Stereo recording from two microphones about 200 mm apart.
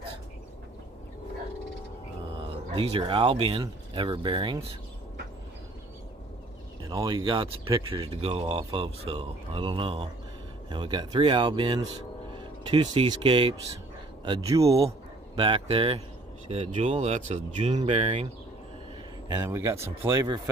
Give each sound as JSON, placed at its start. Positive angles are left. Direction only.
{"t": 2.4, "sound": "speech", "side_deg": -25}
{"t": 6.9, "sound": "speech", "side_deg": -20}
{"t": 14.9, "sound": "speech", "side_deg": -30}
{"t": 19.3, "sound": "speech", "side_deg": -10}